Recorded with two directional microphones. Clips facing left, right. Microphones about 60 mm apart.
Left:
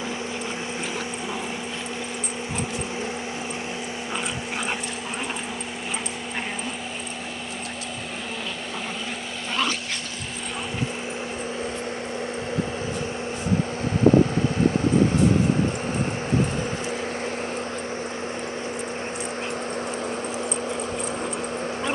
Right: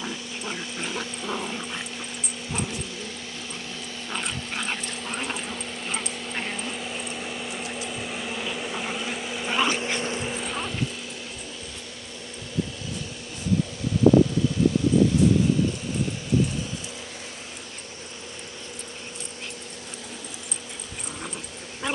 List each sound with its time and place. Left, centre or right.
9.5 s dog: centre